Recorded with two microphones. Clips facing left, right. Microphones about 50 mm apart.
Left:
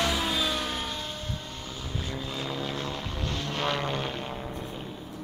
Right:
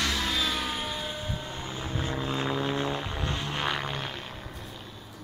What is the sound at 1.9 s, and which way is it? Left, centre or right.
Vehicle, right.